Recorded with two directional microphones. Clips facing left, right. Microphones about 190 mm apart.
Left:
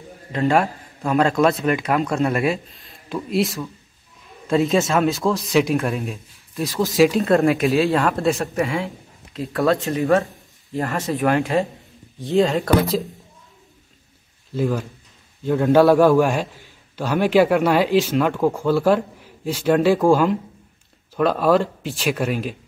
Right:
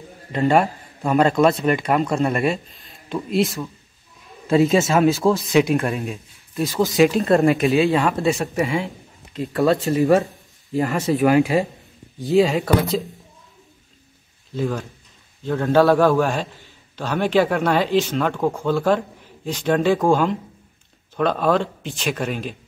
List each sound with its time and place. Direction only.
0.3 s a man's voice: centre (ahead or behind)
10.8 s speech: 15° right (ahead or behind); by 13.0 s centre (ahead or behind)
14.5 s a man's voice: 5° left (ahead or behind)